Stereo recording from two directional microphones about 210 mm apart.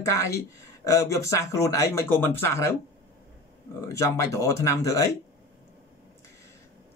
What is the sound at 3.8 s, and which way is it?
A man's voice, 15° left (ahead or behind).